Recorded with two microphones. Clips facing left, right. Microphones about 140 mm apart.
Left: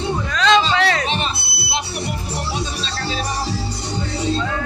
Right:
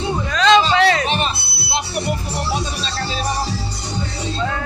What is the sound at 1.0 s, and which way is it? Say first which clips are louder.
Music: right 2 dB; 45° right (ahead or behind).